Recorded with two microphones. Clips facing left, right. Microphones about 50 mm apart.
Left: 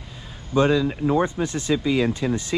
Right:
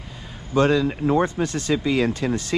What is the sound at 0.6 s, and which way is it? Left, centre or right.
Speech, right.